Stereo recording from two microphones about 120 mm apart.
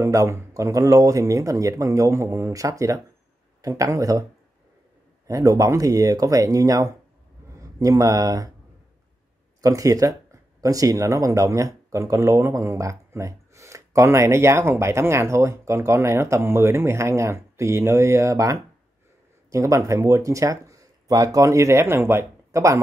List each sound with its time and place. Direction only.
0.0 s speech: 25° right (ahead or behind)
9.6 s speech: 30° right (ahead or behind)